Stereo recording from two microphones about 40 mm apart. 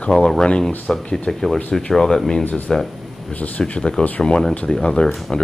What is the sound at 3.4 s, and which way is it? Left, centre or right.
Speech, left.